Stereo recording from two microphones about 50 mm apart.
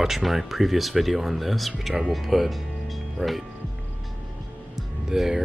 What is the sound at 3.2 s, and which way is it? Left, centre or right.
Speech, right.